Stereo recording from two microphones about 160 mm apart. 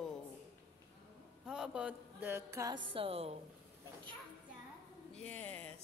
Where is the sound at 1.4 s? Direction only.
5° right (ahead or behind).